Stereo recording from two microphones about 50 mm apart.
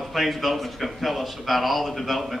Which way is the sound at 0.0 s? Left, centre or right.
Centre.